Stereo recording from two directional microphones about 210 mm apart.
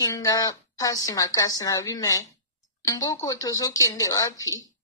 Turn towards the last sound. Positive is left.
turn(degrees=15)  # may be behind; listen again after turning